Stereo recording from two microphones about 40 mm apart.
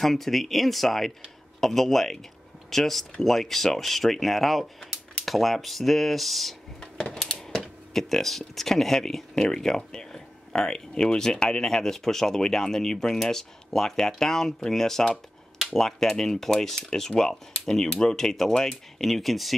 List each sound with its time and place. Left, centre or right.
0.0 s speech: centre
6.8 s a sound: centre
7.4 s speech: centre